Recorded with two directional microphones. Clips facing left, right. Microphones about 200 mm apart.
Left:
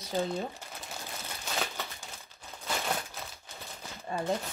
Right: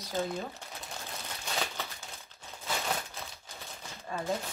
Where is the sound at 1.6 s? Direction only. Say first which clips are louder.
Left 1 dB; 5° left (ahead or behind).